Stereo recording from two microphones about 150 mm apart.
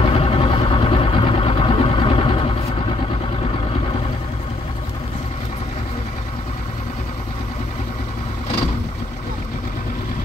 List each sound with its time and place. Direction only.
0.0 s vehicle: 40° left (ahead or behind)